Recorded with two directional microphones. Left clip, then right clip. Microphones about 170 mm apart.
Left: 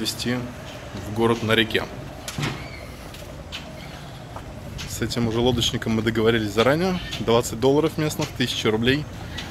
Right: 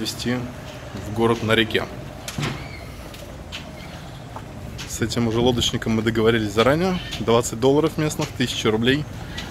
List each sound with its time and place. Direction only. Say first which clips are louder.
0.0 s speech: even; centre (ahead or behind)
4.9 s speech: right 2 dB; 15° right (ahead or behind)